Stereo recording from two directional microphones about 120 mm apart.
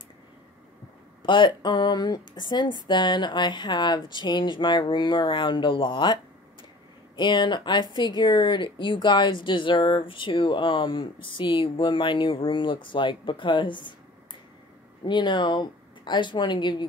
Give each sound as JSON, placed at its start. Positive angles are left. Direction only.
{"t": 1.2, "sound": "speech", "side_deg": 40}
{"t": 7.2, "sound": "speech", "side_deg": 40}
{"t": 15.0, "sound": "speech", "side_deg": 40}